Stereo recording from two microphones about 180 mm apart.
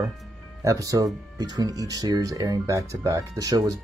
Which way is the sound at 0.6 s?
20° right (ahead or behind).